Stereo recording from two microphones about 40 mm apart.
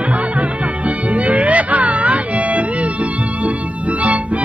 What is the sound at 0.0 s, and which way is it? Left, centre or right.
Music, right.